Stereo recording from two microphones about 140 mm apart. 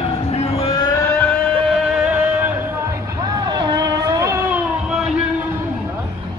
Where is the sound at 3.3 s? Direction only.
30° right (ahead or behind).